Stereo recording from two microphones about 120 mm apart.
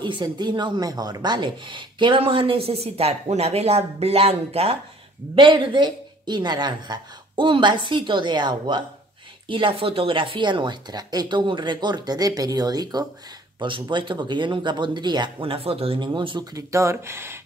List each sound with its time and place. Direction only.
0.0 s speech: 40° right (ahead or behind); by 4.7 s 55° right (ahead or behind)
5.3 s a woman's voice: 45° right (ahead or behind)
16.1 s a woman's voice: 40° right (ahead or behind)
16.5 s speech: 25° right (ahead or behind)